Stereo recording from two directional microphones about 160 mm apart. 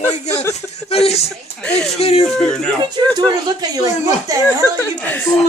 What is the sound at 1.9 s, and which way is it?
Speech, 40° left (ahead or behind).